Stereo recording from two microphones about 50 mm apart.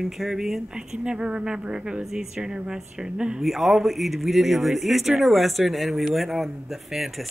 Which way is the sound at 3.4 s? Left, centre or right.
Centre.